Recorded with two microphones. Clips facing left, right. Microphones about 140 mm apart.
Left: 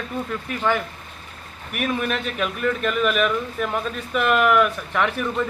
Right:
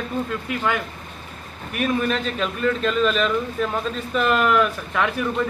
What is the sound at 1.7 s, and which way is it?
A man's voice, 10° left (ahead or behind).